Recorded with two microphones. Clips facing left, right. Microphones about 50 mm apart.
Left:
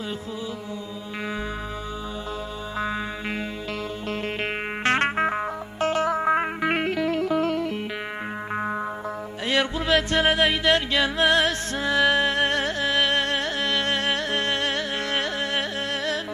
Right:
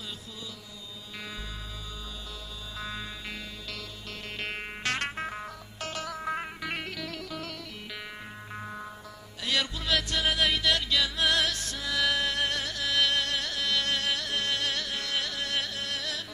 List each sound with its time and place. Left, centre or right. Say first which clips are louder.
2.8 s music: left 10 dB; left
9.5 s music: left 7 dB; left